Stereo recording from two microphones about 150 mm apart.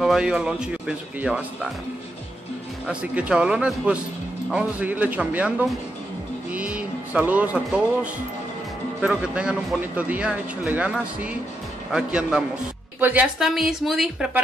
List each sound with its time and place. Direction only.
0.0 s speech: 5° right (ahead or behind)
2.9 s speech: 5° right (ahead or behind)